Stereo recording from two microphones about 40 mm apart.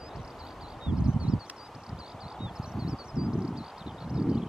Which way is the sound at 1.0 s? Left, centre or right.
Right.